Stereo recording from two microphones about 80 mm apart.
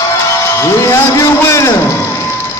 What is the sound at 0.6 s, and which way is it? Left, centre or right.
A man's voice, left.